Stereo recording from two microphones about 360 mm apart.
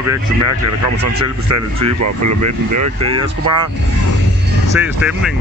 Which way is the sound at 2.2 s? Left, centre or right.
Right.